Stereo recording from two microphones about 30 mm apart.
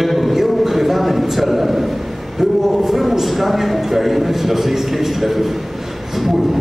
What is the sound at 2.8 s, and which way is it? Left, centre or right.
A man's voice, centre.